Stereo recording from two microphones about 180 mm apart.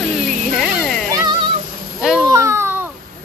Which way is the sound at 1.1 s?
20° right (ahead or behind).